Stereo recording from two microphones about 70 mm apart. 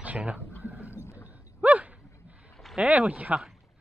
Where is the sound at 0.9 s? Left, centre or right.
Left.